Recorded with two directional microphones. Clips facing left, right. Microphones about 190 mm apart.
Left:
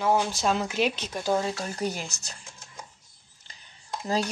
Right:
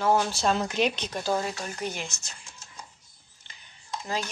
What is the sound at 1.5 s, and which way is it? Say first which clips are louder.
Speech: left 3 dB; 35° left (ahead or behind).